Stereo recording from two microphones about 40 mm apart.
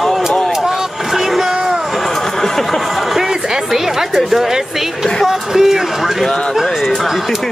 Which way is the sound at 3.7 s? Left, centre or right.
Centre.